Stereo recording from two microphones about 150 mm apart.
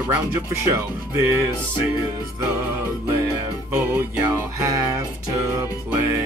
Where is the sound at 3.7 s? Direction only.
15° right (ahead or behind).